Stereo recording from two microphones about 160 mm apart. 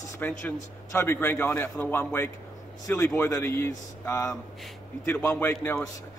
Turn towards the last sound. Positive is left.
turn(degrees=15)  # may be behind; listen again after turning